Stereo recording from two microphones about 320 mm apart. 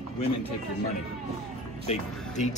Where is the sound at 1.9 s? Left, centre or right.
Left.